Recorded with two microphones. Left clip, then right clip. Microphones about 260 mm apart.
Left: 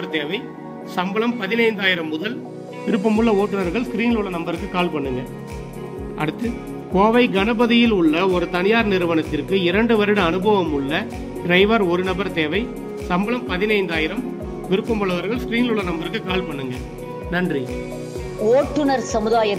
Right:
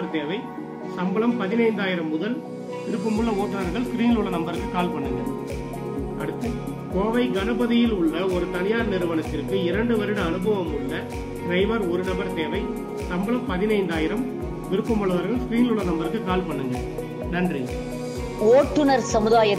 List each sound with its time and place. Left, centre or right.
0.9 s a man's voice: left
3.3 s speech: centre
7.1 s a man's voice: left
18.5 s a woman's voice: centre